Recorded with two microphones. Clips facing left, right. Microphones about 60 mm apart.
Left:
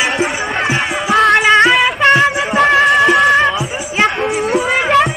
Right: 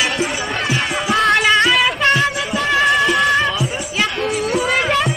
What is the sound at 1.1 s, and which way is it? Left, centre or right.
Music, centre.